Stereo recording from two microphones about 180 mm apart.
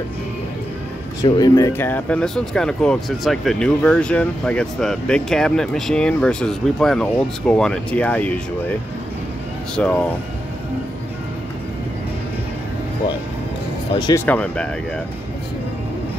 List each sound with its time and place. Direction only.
1.2 s speech: 20° left (ahead or behind)
9.8 s speech: 5° left (ahead or behind)
13.9 s speech: 25° left (ahead or behind)
14.2 s speech: 10° left (ahead or behind)